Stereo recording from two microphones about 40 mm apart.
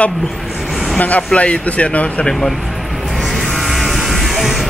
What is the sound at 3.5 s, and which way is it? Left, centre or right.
Music, centre.